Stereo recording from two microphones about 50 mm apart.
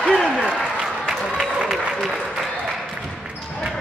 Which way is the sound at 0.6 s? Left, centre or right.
Centre.